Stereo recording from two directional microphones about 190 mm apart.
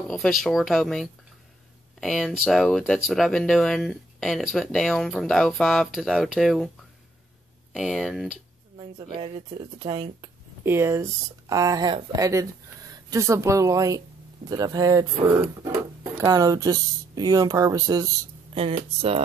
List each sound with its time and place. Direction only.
0.1 s speech: centre (ahead or behind)
7.7 s speech: centre (ahead or behind)
8.7 s speech: 25° right (ahead or behind)
10.6 s speech: 10° right (ahead or behind)
18.5 s speech: 30° right (ahead or behind)
18.9 s a sound: 30° right (ahead or behind)